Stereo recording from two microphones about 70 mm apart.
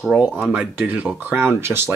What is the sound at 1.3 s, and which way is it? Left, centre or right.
Speech, right.